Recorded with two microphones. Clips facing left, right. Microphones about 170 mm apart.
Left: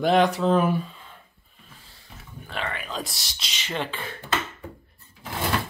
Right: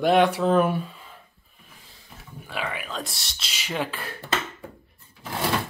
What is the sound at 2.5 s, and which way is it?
Speech, 5° right (ahead or behind).